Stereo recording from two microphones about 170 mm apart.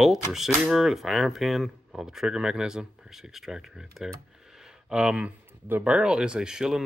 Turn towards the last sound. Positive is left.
turn(degrees=-5)  # may be behind; listen again after turning